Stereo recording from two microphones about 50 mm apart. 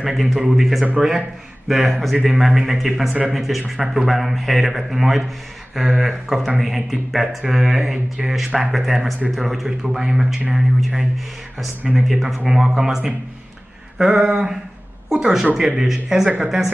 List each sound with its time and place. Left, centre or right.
0.0 s speech: centre
3.1 s speech: right
3.3 s speech: centre